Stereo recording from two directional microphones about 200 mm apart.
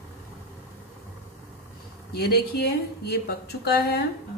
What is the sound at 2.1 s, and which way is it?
Speech, 50° left (ahead or behind).